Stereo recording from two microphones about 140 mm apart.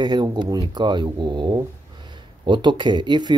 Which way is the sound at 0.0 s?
30° right (ahead or behind).